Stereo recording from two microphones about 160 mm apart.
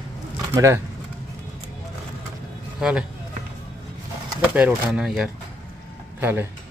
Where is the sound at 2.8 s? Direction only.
5° right (ahead or behind).